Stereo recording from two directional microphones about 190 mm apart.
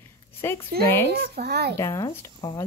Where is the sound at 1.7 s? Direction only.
15° left (ahead or behind).